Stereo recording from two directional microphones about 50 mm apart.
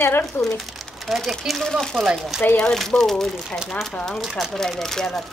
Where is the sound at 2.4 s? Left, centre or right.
Left.